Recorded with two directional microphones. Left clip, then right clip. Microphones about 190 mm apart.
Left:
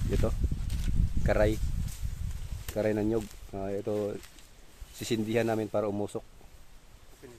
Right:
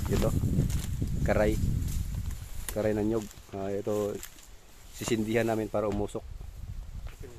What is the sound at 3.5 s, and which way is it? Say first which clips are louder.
Speech: right 3 dB; centre (ahead or behind).